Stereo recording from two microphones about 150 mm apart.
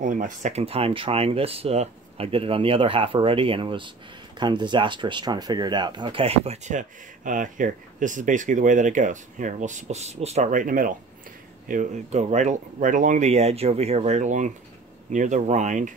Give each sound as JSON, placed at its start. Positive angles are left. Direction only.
{"t": 0.0, "sound": "speech", "side_deg": -60}